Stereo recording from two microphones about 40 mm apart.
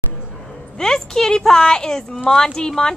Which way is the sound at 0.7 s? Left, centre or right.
Centre.